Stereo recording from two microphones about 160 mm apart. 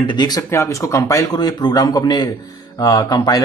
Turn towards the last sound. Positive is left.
turn(degrees=25)  # may be behind; listen again after turning